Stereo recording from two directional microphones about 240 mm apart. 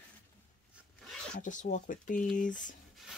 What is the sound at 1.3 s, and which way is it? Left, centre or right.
Speech, left.